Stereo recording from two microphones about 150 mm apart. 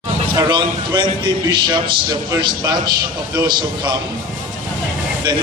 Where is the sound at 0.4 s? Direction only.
30° right (ahead or behind).